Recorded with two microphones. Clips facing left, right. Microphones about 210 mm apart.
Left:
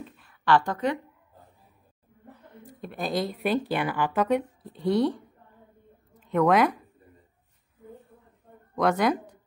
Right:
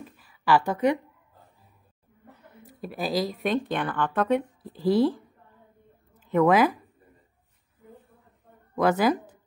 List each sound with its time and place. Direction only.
0.0 s a sound: 5° right (ahead or behind)
2.6 s speech: 5° right (ahead or behind)
8.7 s speech: 5° right (ahead or behind)